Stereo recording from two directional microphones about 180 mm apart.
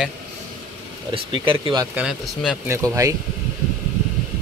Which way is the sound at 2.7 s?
15° right (ahead or behind).